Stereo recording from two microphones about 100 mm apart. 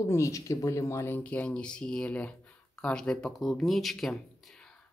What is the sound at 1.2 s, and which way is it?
A man's voice, 15° left (ahead or behind).